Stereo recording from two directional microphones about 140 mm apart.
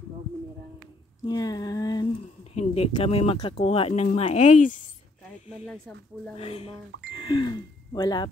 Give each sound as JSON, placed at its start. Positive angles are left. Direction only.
{"t": 1.2, "sound": "a sound", "side_deg": 30}
{"t": 2.5, "sound": "a sound", "side_deg": 50}
{"t": 2.9, "sound": "speech", "side_deg": 40}
{"t": 4.2, "sound": "speech", "side_deg": 55}
{"t": 6.3, "sound": "speech", "side_deg": 45}
{"t": 7.2, "sound": "speech", "side_deg": 30}